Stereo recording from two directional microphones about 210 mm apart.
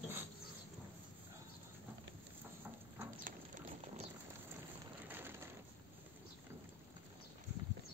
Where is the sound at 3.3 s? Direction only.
35° right (ahead or behind).